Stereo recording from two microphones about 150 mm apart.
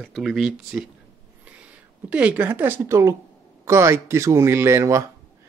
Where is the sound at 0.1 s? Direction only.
Centre (ahead or behind).